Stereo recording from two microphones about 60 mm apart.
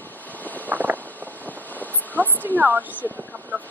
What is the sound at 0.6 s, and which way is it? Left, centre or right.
Vehicle, right.